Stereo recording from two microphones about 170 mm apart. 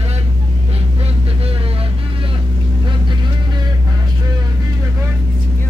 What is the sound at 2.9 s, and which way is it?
Vehicle, 25° right (ahead or behind).